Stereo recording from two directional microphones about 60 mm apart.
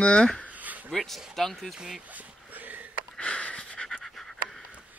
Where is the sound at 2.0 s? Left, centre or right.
Right.